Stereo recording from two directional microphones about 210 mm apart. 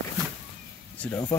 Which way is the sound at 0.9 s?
5° left (ahead or behind).